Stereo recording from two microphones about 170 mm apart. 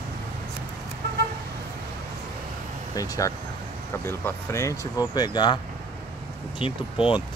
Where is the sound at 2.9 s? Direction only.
20° left (ahead or behind).